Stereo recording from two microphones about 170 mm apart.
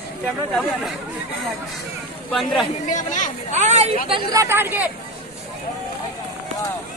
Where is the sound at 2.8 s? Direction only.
50° left (ahead or behind).